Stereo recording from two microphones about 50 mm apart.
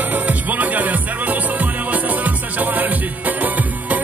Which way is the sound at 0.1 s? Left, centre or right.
Right.